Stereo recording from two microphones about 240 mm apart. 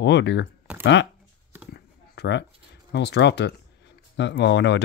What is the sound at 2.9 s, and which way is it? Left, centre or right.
Speech, left.